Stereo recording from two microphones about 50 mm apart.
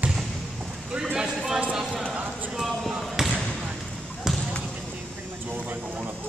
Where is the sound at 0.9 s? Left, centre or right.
Centre.